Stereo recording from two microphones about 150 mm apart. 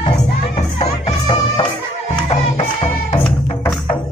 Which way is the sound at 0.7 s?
35° left (ahead or behind).